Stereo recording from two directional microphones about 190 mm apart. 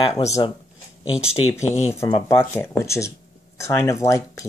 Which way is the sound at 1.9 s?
15° left (ahead or behind).